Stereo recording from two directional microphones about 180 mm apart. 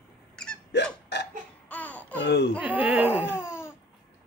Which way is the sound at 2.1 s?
70° left (ahead or behind).